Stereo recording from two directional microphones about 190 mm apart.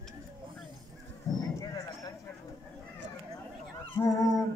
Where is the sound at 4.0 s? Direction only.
15° left (ahead or behind).